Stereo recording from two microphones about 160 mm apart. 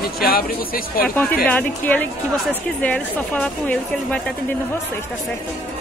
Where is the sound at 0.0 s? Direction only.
70° left (ahead or behind).